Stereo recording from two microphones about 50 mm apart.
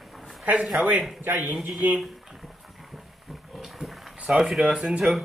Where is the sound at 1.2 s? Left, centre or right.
Right.